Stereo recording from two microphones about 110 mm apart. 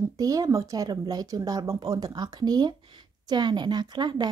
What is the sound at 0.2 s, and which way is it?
Speech, 30° right (ahead or behind).